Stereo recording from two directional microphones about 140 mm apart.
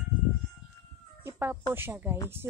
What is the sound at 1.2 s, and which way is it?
Cat, 15° right (ahead or behind).